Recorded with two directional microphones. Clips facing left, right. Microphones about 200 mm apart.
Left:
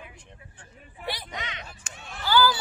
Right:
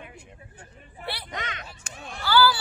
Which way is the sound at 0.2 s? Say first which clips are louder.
Right 3 dB; 10° right (ahead or behind).